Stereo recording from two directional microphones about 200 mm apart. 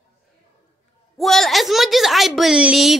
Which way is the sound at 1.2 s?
Centre (ahead or behind).